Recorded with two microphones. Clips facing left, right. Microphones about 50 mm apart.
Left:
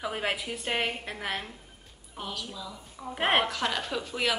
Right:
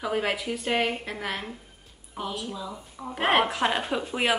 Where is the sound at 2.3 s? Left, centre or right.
Right.